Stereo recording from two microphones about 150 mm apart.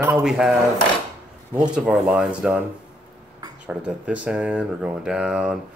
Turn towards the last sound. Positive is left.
turn(degrees=-5)  # may be behind; listen again after turning